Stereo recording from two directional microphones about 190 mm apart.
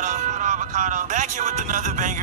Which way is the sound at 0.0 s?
40° right (ahead or behind).